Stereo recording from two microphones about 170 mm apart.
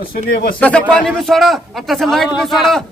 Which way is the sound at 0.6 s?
5° left (ahead or behind).